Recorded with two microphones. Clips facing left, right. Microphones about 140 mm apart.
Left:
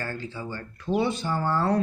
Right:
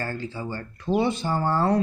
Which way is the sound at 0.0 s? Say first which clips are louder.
Right 3 dB; 35° right (ahead or behind).